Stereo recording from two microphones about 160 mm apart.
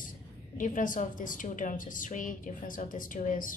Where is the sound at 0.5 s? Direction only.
55° left (ahead or behind).